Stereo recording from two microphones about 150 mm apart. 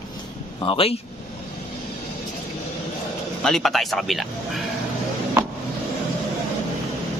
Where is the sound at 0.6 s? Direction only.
35° left (ahead or behind).